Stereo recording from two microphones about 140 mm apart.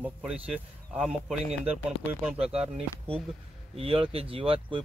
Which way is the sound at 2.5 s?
45° right (ahead or behind).